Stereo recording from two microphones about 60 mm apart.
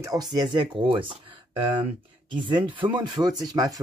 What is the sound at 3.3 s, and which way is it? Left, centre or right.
Speech, right.